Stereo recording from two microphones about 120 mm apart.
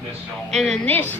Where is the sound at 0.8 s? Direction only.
15° left (ahead or behind).